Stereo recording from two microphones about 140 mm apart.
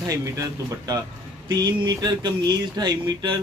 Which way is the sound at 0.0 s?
25° right (ahead or behind).